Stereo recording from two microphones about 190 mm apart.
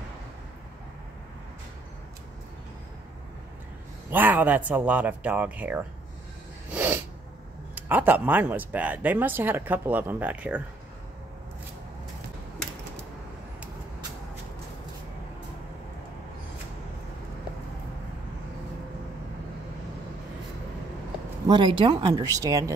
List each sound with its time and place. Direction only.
4.1 s speech: 10° right (ahead or behind)
6.7 s sneeze: 10° right (ahead or behind)
7.7 s speech: 10° right (ahead or behind)
21.5 s speech: 25° right (ahead or behind)